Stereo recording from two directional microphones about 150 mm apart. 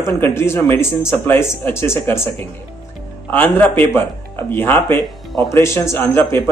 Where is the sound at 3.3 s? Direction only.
10° left (ahead or behind).